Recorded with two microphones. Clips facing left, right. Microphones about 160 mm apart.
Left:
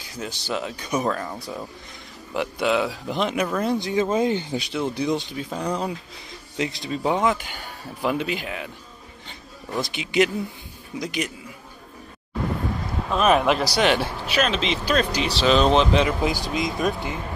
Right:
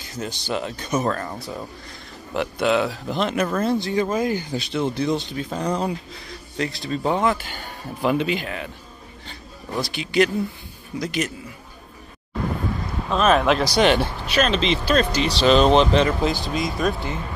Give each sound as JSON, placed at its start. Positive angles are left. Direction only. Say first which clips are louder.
{"t": 0.0, "sound": "speech", "louder": "right 2 dB", "side_deg": 10}
{"t": 2.3, "sound": "speech", "louder": "right 2 dB", "side_deg": 5}
{"t": 4.6, "sound": "speech", "louder": "right 2 dB", "side_deg": 10}
{"t": 9.8, "sound": "speech", "louder": "right 1 dB", "side_deg": 20}
{"t": 13.1, "sound": "speech", "louder": "right 1 dB", "side_deg": 10}